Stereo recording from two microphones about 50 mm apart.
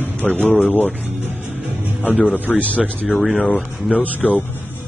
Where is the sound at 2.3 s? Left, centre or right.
Left.